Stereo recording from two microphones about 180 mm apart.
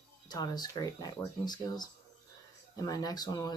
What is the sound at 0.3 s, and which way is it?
Speech, 20° left (ahead or behind).